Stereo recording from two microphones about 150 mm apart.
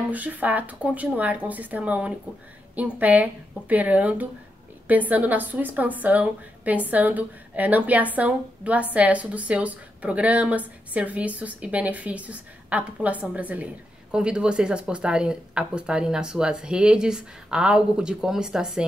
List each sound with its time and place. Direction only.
0.1 s a woman's voice: 10° right (ahead or behind)